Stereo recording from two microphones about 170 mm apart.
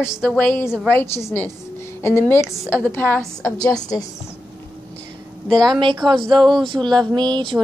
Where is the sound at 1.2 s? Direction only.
10° left (ahead or behind).